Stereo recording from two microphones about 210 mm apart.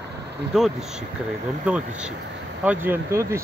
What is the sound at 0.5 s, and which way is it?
Speech, 5° right (ahead or behind).